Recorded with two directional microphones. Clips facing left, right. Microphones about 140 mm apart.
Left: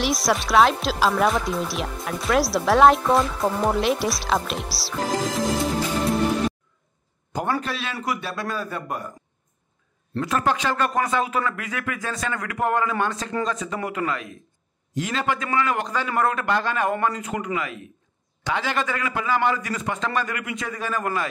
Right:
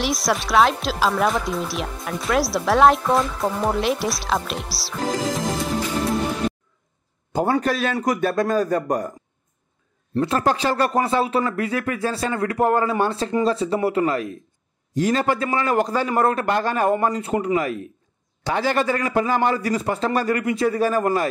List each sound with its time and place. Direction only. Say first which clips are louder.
0.0 s speech: even; centre (ahead or behind)
7.3 s speech: right 5 dB; 30° right (ahead or behind)
7.6 s speech: right 7 dB; 45° right (ahead or behind)
10.2 s a man's voice: right 2 dB; 35° right (ahead or behind)